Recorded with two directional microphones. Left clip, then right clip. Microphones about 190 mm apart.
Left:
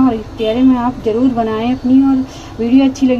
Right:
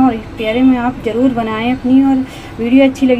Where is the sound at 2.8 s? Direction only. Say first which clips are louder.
Right 3 dB; 20° left (ahead or behind).